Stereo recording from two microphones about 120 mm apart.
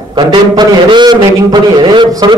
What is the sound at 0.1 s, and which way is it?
A man's voice, 40° right (ahead or behind).